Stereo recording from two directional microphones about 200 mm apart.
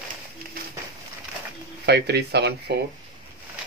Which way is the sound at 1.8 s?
55° right (ahead or behind).